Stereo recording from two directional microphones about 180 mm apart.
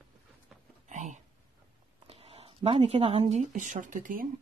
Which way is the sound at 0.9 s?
40° right (ahead or behind).